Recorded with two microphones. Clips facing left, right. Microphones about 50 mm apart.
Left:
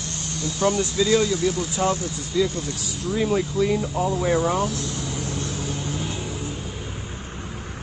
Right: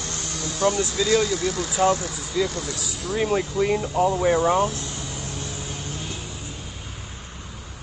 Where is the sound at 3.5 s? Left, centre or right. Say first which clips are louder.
Right 1 dB; right.